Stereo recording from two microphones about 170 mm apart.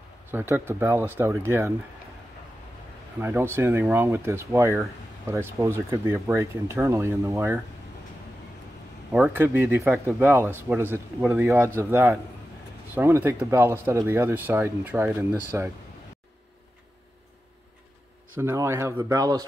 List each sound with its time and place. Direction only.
0.3 s speech: 15° right (ahead or behind)
3.2 s speech: 15° right (ahead or behind)
9.1 s speech: 10° right (ahead or behind)
18.4 s speech: 15° right (ahead or behind)